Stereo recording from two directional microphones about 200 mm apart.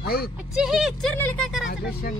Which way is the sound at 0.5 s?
Centre (ahead or behind).